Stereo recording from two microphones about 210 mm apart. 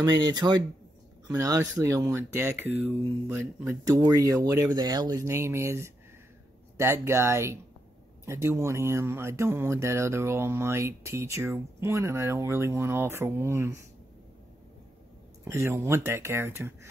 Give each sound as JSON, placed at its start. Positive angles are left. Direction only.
{"t": 0.0, "sound": "speech", "side_deg": -20}
{"t": 15.4, "sound": "speech", "side_deg": -10}